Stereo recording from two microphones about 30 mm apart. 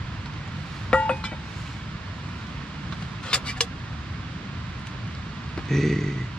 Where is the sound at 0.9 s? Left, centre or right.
Left.